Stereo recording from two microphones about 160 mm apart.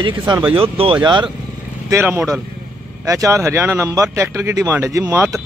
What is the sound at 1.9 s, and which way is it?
A man's voice, 15° right (ahead or behind).